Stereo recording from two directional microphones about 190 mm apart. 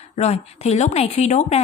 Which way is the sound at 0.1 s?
35° left (ahead or behind).